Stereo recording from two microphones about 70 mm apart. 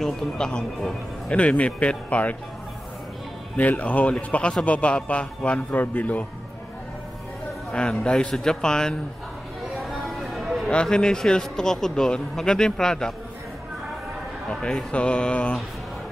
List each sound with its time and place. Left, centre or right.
0.0 s a man's voice: centre
1.3 s a man's voice: centre
3.5 s a man's voice: left
7.7 s a man's voice: centre
9.8 s a sound: centre
10.7 s a man's voice: centre
14.5 s a man's voice: centre